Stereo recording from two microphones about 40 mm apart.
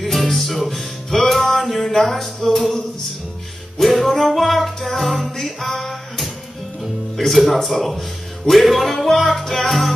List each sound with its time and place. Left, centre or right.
0.0 s music: centre
3.7 s music: centre
7.3 s music: centre